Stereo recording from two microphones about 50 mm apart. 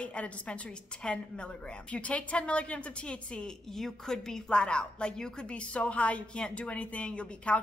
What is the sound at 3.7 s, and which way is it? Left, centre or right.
A woman's voice, centre.